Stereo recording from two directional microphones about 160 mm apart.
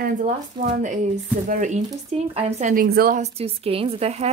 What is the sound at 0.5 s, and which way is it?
Speech, 25° right (ahead or behind).